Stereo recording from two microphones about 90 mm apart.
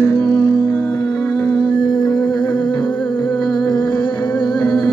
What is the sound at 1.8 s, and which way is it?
Music, 55° left (ahead or behind).